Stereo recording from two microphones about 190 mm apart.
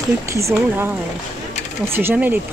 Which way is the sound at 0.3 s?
15° right (ahead or behind).